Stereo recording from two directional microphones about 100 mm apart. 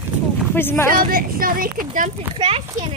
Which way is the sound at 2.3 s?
75° right (ahead or behind).